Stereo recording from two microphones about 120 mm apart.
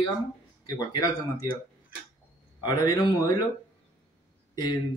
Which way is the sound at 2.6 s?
35° left (ahead or behind).